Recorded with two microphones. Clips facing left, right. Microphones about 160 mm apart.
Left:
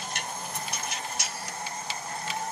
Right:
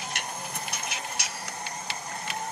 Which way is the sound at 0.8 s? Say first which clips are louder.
Even; 70° right (ahead or behind).